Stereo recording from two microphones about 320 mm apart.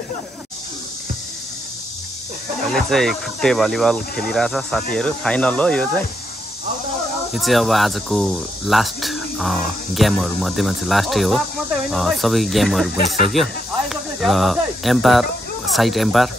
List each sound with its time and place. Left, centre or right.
2.7 s speech: centre
7.3 s speech: centre